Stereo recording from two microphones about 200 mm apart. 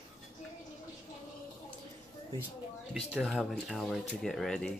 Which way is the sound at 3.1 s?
Centre (ahead or behind).